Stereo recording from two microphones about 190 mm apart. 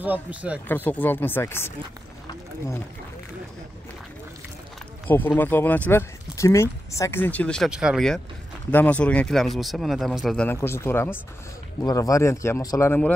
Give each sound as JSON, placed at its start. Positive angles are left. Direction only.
{"t": 0.0, "sound": "speech", "side_deg": -10}
{"t": 0.7, "sound": "speech", "side_deg": 10}
{"t": 5.0, "sound": "speech", "side_deg": 10}